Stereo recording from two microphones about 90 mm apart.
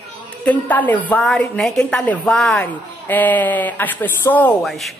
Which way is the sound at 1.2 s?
5° left (ahead or behind).